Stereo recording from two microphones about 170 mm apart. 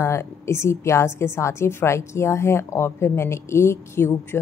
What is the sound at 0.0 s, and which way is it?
A woman's voice, 15° left (ahead or behind).